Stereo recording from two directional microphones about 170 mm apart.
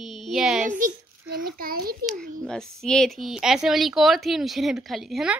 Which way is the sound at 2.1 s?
5° left (ahead or behind).